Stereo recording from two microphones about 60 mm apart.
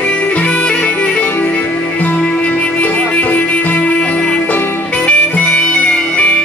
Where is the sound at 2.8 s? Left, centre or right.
Left.